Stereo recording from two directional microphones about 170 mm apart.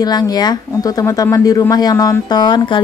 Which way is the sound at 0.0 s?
25° left (ahead or behind).